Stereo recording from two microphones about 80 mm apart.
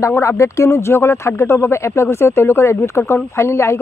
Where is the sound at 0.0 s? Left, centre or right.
Left.